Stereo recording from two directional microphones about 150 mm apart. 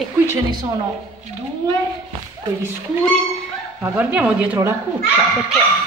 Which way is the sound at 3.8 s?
10° right (ahead or behind).